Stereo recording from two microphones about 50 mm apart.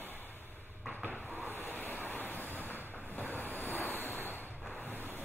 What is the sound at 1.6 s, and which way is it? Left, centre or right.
Waves, left.